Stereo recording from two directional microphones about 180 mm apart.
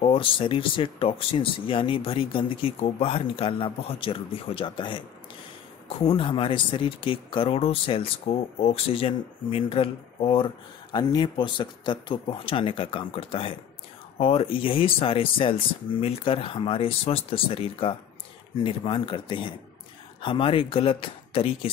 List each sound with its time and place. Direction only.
0.0 s speech: 30° left (ahead or behind)